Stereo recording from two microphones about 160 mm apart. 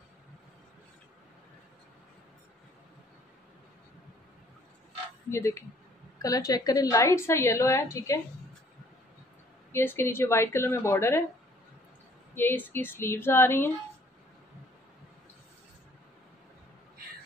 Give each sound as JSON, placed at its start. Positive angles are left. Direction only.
{"t": 5.3, "sound": "a woman's voice", "side_deg": 15}
{"t": 9.7, "sound": "a woman's voice", "side_deg": 15}
{"t": 12.4, "sound": "a woman's voice", "side_deg": 15}